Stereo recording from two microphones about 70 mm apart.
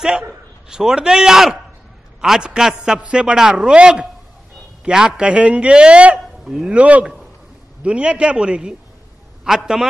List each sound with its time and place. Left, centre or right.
0.7 s a man's voice: centre
6.1 s speech: centre
6.7 s a man's voice: centre